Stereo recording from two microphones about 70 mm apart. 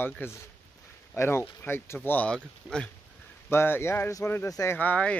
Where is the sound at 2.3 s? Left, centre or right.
Centre.